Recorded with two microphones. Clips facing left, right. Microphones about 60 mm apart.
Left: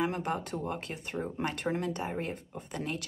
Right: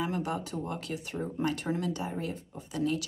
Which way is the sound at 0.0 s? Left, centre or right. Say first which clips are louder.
Left 1 dB; left.